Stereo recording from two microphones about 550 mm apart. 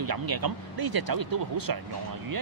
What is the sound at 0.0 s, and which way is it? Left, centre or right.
Speech, right.